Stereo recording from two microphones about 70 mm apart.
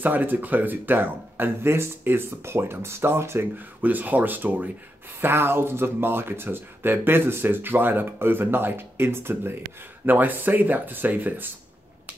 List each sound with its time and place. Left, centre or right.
0.0 s speech: right
3.5 s speech: right